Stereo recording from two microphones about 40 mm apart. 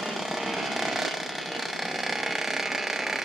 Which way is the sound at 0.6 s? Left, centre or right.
Centre.